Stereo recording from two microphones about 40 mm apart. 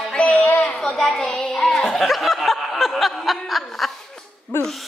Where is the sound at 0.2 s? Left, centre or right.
Left.